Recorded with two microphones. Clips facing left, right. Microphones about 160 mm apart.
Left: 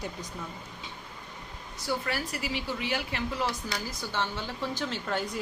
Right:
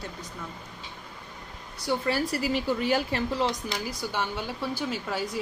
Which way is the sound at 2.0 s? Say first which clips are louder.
Right 6 dB; 35° right (ahead or behind).